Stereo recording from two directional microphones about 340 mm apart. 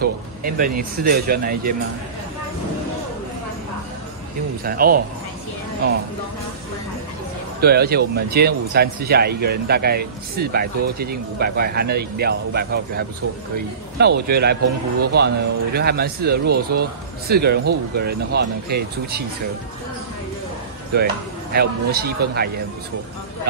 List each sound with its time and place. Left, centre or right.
0.0 s speech: right
4.6 s speech: right
7.6 s speech: right
20.9 s speech: right